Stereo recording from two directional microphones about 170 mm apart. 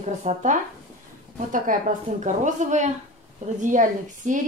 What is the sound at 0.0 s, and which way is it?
A woman's voice, 40° right (ahead or behind).